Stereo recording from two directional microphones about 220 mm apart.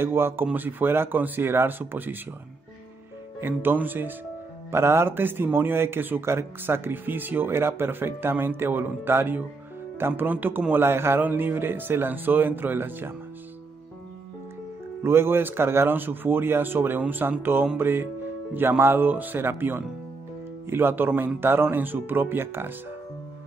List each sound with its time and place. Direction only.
0.0 s a man's voice: 10° right (ahead or behind)
3.3 s a man's voice: 10° right (ahead or behind)
15.0 s a man's voice: 10° right (ahead or behind)